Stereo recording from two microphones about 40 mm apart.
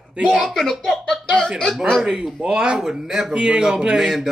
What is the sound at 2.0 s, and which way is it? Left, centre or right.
Speech, centre.